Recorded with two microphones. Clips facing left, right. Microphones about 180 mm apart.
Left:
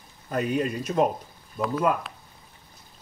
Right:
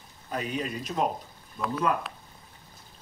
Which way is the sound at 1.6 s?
Centre (ahead or behind).